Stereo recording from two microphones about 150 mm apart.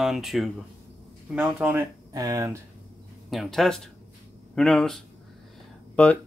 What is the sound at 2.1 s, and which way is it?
Speech, 25° right (ahead or behind).